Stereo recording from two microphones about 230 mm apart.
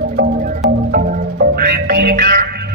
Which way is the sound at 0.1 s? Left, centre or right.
Right.